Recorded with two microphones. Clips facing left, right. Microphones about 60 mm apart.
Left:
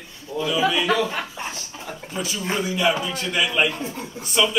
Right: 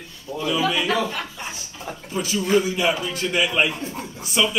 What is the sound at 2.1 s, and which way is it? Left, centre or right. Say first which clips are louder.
Speech: right 6 dB; centre.